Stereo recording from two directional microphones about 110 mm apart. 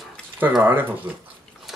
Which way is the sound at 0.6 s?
15° right (ahead or behind).